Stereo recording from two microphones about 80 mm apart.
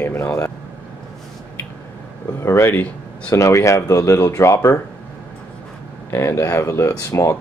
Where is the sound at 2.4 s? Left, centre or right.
Left.